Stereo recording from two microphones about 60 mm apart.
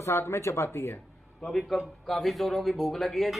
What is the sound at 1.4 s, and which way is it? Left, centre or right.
Speech, centre.